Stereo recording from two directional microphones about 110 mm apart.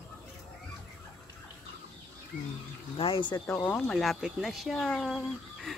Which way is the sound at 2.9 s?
55° left (ahead or behind).